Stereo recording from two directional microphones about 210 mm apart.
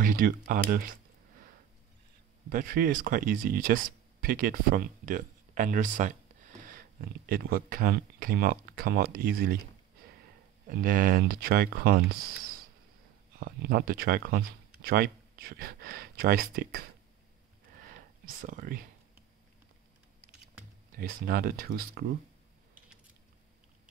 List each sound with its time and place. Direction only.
0.0 s speech: 40° right (ahead or behind)
2.5 s speech: 40° right (ahead or behind)
10.7 s speech: 45° right (ahead or behind)
13.4 s speech: 45° right (ahead or behind)
17.7 s a sound: 40° right (ahead or behind)
20.9 s speech: 45° right (ahead or behind)